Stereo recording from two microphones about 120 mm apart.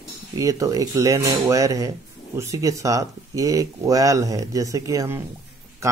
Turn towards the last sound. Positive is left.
turn(degrees=-25)  # may be behind; listen again after turning